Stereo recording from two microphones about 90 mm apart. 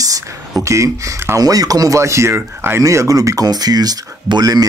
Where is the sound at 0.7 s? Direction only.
35° right (ahead or behind).